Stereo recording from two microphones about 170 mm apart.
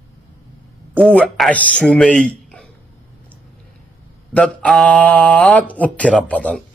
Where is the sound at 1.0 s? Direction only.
5° left (ahead or behind).